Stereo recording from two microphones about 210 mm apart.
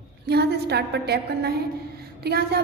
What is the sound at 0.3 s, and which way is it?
A woman's voice, 50° right (ahead or behind).